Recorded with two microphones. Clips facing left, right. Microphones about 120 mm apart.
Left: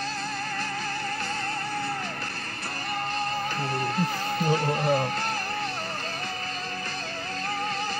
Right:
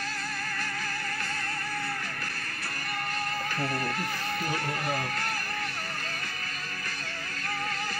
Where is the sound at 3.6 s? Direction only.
25° left (ahead or behind).